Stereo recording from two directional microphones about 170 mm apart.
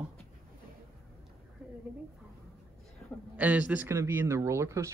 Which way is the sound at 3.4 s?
10° right (ahead or behind).